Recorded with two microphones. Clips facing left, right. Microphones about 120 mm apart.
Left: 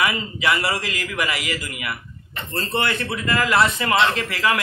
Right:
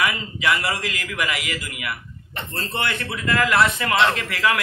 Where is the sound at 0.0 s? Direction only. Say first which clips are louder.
Left 1 dB; 5° left (ahead or behind).